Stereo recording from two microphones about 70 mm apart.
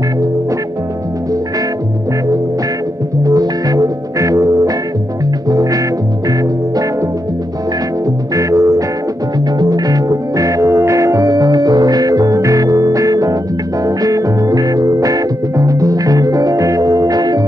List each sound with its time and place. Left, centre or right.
3.3 s music: right
8.4 s music: right